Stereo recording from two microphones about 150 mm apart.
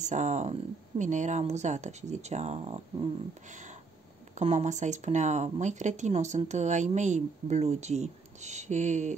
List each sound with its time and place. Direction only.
0.0 s speech: 55° right (ahead or behind)
3.4 s a sound: 55° right (ahead or behind)
4.4 s speech: 50° right (ahead or behind)